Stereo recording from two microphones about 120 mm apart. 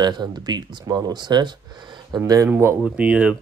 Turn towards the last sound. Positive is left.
turn(degrees=-10)  # may be behind; listen again after turning